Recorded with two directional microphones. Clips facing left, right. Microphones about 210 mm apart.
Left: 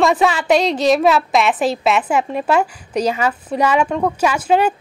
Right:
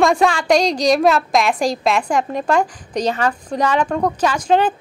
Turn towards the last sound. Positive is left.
turn(degrees=10)  # may be behind; listen again after turning